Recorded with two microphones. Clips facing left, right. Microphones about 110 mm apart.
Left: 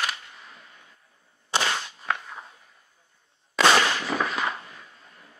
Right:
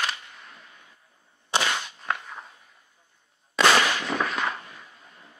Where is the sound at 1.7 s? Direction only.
Centre (ahead or behind).